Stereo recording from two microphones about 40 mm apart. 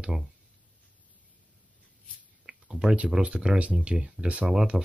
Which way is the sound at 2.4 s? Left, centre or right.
Centre.